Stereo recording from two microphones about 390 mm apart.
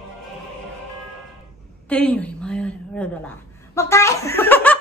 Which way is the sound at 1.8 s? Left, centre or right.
Centre.